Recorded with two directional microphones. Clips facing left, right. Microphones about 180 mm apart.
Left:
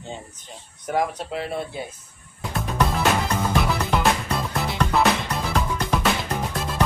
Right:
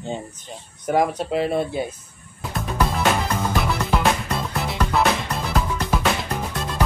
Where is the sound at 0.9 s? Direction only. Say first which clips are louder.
Right 4 dB; 20° right (ahead or behind).